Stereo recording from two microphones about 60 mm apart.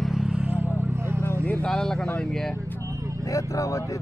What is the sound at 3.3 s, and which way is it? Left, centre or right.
Speech, left.